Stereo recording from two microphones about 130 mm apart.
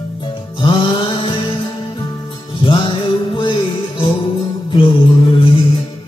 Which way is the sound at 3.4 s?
40° left (ahead or behind).